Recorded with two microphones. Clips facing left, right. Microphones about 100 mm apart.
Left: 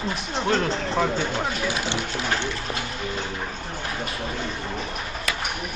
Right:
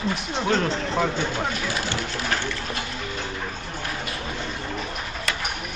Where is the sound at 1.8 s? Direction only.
20° left (ahead or behind).